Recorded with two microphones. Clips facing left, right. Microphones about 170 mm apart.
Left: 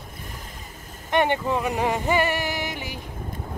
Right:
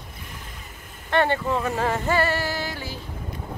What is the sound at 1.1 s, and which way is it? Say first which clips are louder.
Speech: even; 15° left (ahead or behind).